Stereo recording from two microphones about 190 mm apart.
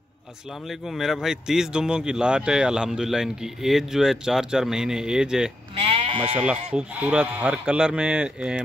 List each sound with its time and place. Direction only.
0.7 s speech: centre (ahead or behind)
5.8 s sheep: 30° right (ahead or behind)
6.7 s speech: 5° right (ahead or behind)